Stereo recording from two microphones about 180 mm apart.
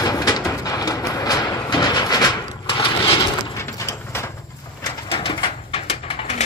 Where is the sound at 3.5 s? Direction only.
15° left (ahead or behind).